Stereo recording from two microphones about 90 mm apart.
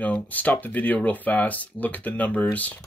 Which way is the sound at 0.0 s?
15° left (ahead or behind).